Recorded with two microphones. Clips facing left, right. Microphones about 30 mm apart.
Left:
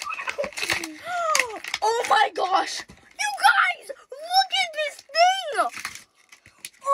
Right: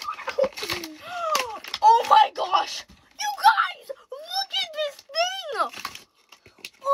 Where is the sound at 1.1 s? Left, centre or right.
Left.